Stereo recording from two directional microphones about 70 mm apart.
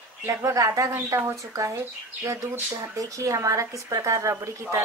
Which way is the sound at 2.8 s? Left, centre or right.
Right.